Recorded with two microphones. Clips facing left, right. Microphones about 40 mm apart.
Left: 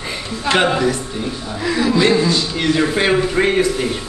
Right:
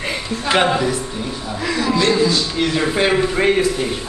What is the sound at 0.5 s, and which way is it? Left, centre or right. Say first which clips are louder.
Speech: left 1 dB; centre.